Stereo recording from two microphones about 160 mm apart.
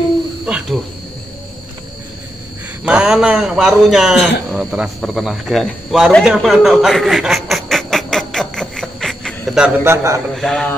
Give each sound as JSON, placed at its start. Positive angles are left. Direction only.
{"t": 0.5, "sound": "a sound", "side_deg": -5}
{"t": 2.8, "sound": "a man's voice", "side_deg": -5}
{"t": 9.8, "sound": "a man's voice", "side_deg": -20}
{"t": 10.3, "sound": "a man's voice", "side_deg": 0}